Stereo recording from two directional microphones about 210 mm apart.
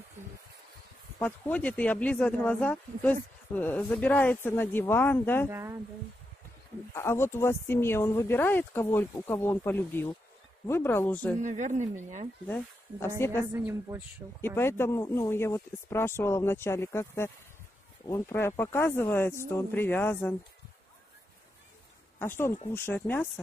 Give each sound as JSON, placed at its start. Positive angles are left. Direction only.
{"t": 1.2, "sound": "speech", "side_deg": 5}
{"t": 5.5, "sound": "a woman's voice", "side_deg": -10}
{"t": 6.9, "sound": "speech", "side_deg": 10}
{"t": 11.4, "sound": "speech", "side_deg": -35}
{"t": 12.4, "sound": "speech", "side_deg": 10}
{"t": 13.5, "sound": "a woman's voice", "side_deg": -10}
{"t": 14.4, "sound": "speech", "side_deg": 10}
{"t": 22.2, "sound": "speech", "side_deg": 10}